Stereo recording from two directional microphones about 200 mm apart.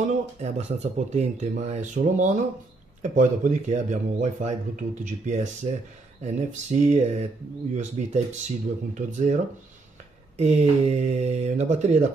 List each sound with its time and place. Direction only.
0.4 s speech: 35° right (ahead or behind)
10.3 s speech: 35° right (ahead or behind)